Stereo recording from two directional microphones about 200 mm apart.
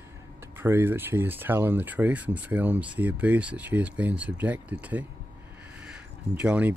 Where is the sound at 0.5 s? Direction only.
10° right (ahead or behind).